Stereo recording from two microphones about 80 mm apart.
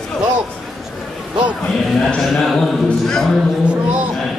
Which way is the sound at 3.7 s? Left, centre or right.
Centre.